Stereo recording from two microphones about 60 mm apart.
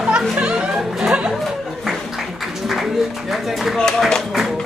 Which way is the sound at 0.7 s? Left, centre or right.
Centre.